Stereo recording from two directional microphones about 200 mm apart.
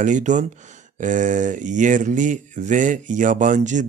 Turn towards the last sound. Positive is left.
turn(degrees=-40)  # may be behind; listen again after turning